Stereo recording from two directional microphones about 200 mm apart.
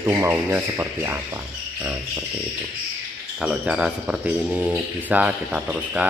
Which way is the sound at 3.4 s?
5° right (ahead or behind).